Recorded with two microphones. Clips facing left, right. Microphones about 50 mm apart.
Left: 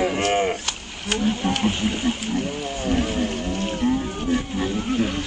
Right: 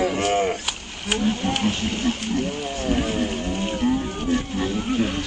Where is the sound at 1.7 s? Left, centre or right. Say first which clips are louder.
Left 1 dB; centre.